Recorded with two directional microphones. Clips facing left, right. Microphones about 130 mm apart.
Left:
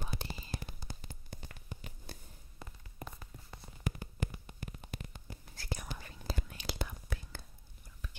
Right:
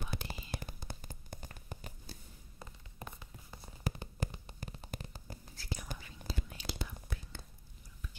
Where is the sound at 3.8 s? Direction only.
30° right (ahead or behind).